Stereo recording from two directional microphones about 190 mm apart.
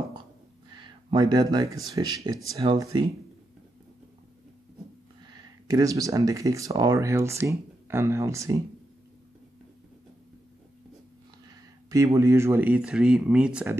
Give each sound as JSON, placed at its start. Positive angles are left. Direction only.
{"t": 0.7, "sound": "speech", "side_deg": -20}
{"t": 5.7, "sound": "speech", "side_deg": -20}
{"t": 11.9, "sound": "speech", "side_deg": -15}